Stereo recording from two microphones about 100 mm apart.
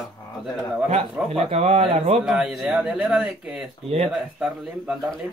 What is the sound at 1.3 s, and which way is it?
Speech, 90° right.